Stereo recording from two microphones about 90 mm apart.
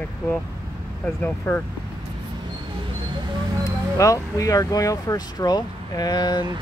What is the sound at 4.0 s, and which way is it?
Speech, 40° left (ahead or behind).